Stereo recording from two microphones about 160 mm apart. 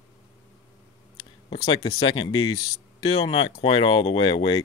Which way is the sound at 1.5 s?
35° left (ahead or behind).